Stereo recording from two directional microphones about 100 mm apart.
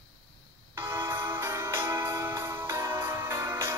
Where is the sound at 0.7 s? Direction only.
25° right (ahead or behind).